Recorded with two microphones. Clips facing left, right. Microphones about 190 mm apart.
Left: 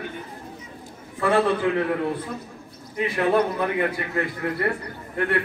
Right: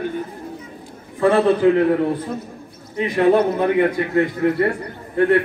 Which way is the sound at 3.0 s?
30° right (ahead or behind).